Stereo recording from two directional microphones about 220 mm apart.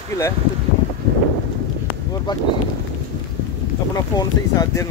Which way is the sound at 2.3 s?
20° left (ahead or behind).